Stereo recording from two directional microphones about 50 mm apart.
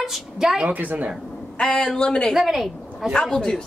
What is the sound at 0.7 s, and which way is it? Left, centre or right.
Speech, right.